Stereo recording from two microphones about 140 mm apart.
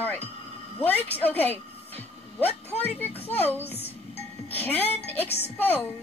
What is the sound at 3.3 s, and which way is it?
Speech, 15° left (ahead or behind).